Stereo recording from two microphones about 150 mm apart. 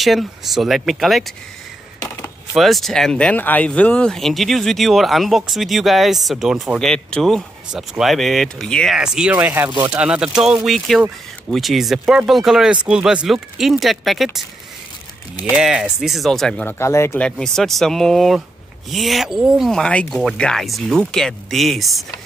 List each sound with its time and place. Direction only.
0.0 s speech: centre (ahead or behind)
2.5 s speech: centre (ahead or behind)
15.5 s speech: 5° right (ahead or behind)
16.7 s speech: 15° left (ahead or behind)
17.2 s speech: 5° left (ahead or behind)